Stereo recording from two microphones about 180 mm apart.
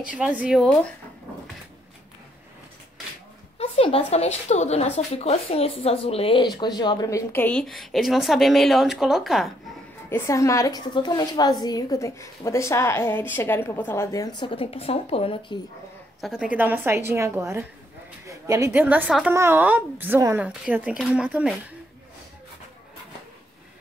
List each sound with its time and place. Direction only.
0.0 s speech: 5° right (ahead or behind)
3.5 s speech: 30° left (ahead or behind); by 9.5 s centre (ahead or behind)
10.0 s a woman's voice: 15° left (ahead or behind)
16.2 s a woman's voice: 5° right (ahead or behind)